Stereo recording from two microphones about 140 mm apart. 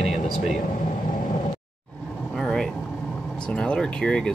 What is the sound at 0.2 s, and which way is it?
Speech, 60° left (ahead or behind).